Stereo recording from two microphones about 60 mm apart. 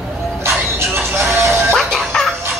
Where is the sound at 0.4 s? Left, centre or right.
Right.